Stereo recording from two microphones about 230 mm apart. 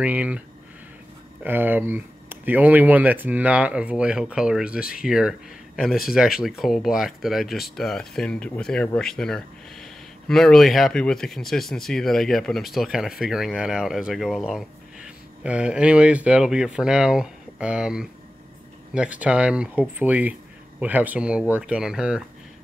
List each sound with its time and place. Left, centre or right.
0.0 s speech: centre
1.4 s speech: centre